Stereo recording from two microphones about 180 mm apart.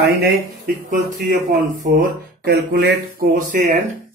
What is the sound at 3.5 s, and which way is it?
Speech, 45° right (ahead or behind).